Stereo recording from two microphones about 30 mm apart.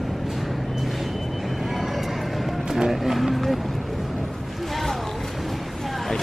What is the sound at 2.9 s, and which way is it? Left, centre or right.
Speech, centre.